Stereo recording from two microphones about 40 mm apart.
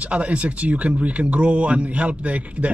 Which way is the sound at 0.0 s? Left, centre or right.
Right.